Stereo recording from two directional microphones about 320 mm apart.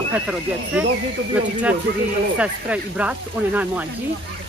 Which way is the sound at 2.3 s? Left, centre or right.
Centre.